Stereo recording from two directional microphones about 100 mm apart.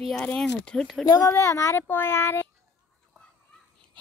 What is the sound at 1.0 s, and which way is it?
Speech, 40° left (ahead or behind).